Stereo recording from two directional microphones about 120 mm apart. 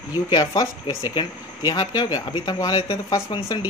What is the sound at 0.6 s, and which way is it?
Speech, 35° left (ahead or behind).